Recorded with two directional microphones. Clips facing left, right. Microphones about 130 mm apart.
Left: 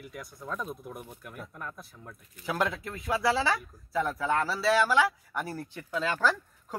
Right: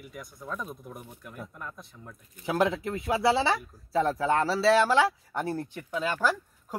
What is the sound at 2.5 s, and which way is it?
Speech, 25° right (ahead or behind).